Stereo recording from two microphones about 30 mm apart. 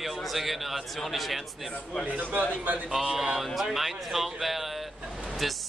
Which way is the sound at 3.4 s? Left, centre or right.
Centre.